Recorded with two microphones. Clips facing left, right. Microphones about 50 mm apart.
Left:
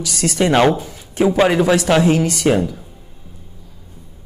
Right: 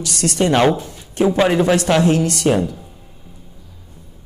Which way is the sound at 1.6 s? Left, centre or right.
Centre.